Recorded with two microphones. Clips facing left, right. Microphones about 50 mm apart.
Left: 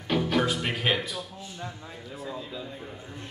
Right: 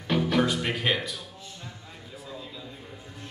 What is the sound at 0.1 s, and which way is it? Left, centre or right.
Speech, centre.